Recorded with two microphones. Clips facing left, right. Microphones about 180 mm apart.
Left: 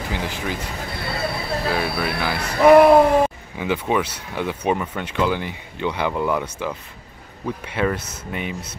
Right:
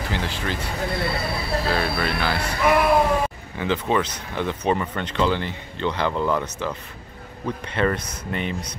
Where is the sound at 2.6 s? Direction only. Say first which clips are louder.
Left 9 dB; 45° left (ahead or behind).